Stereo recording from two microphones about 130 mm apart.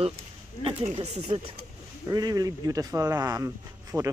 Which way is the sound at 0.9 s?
50° right (ahead or behind).